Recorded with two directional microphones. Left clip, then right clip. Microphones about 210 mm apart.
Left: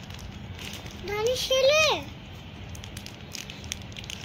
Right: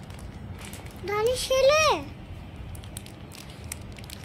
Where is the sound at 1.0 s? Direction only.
50° right (ahead or behind).